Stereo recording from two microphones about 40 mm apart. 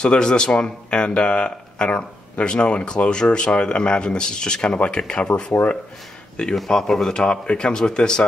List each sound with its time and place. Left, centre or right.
0.0 s speech: left
6.7 s speech: centre
7.2 s speech: left